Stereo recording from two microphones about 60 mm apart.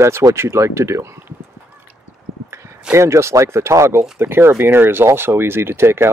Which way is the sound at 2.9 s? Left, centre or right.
Right.